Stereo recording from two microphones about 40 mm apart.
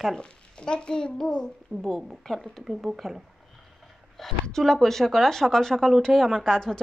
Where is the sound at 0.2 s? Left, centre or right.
Left.